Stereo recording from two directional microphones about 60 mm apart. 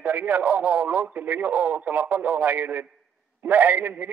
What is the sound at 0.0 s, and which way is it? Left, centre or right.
Speech, right.